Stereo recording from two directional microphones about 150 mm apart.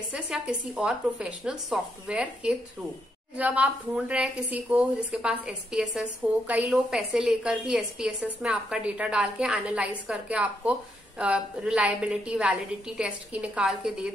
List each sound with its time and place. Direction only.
0.1 s a woman's voice: 5° right (ahead or behind)